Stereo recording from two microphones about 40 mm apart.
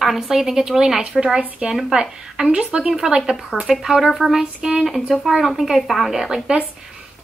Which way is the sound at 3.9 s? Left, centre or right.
Centre.